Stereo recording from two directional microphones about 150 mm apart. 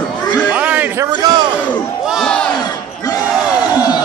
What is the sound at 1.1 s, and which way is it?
Speech, 30° right (ahead or behind).